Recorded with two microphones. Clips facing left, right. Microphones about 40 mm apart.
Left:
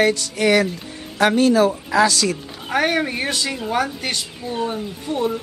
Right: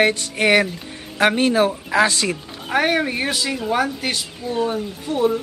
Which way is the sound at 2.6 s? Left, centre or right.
Centre.